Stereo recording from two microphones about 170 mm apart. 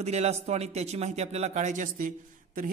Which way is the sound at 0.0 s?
40° right (ahead or behind).